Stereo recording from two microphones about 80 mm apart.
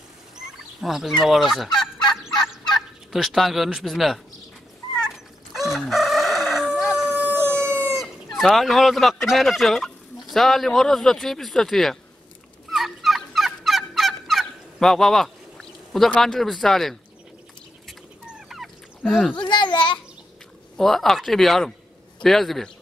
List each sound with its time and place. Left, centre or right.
0.7 s speech: centre
3.1 s speech: centre
5.1 s chicken: centre
7.3 s howl: centre
7.9 s speech: centre
12.6 s fowl: centre
16.2 s speech: centre
18.5 s fowl: centre
19.3 s a sound: left
20.7 s speech: centre